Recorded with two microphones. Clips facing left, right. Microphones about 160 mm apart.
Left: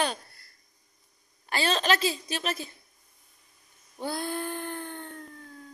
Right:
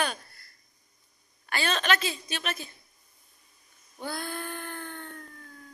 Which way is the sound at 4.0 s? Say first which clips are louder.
Left 4 dB; 30° left (ahead or behind).